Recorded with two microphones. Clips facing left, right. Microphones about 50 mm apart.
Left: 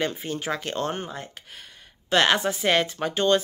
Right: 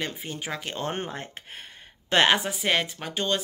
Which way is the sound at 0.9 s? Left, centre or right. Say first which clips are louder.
Even; right.